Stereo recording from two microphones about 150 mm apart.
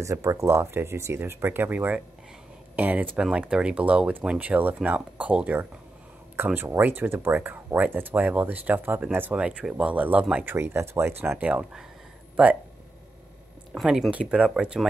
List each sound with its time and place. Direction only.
0.0 s speech: 20° right (ahead or behind)
13.7 s speech: centre (ahead or behind)